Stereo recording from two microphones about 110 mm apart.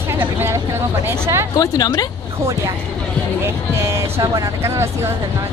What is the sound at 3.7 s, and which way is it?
Speech, 25° right (ahead or behind).